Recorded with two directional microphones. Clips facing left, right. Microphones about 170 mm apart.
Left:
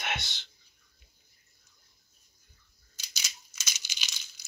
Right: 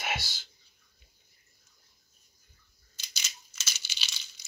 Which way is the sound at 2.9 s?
10° left (ahead or behind).